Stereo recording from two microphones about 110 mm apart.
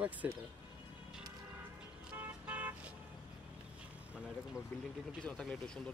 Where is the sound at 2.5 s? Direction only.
15° right (ahead or behind).